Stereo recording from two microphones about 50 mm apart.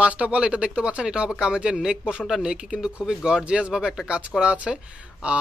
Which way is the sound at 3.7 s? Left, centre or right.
Centre.